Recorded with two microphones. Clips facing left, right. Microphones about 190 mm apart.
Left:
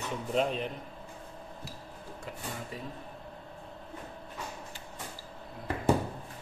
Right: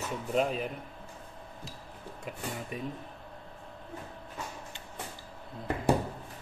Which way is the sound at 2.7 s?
20° right (ahead or behind).